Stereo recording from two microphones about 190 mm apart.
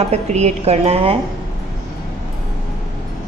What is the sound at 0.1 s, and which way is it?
A woman's voice, 35° right (ahead or behind).